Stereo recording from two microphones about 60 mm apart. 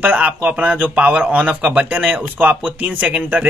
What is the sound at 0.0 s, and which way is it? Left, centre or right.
Speech, right.